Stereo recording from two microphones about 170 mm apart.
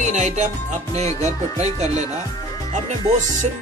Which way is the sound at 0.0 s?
45° right (ahead or behind).